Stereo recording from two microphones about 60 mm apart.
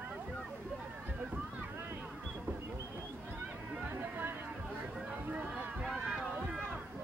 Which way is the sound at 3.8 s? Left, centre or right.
Right.